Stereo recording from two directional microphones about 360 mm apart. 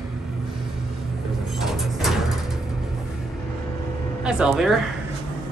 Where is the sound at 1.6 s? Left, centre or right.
Centre.